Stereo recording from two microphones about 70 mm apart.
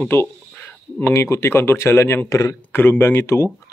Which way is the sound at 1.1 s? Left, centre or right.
Left.